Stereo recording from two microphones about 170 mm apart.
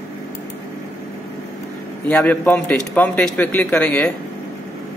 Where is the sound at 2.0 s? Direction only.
10° left (ahead or behind).